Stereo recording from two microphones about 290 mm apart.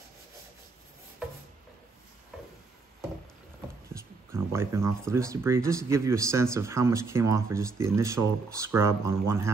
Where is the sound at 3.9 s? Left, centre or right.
Centre.